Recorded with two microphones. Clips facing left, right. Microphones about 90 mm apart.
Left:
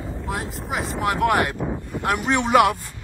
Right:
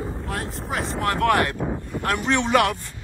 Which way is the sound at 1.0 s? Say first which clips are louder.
Even; 15° left (ahead or behind).